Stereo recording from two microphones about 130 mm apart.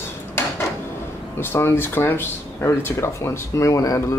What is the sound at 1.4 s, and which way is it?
Speech, 20° left (ahead or behind).